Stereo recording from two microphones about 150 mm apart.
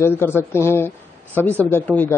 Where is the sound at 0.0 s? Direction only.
15° left (ahead or behind).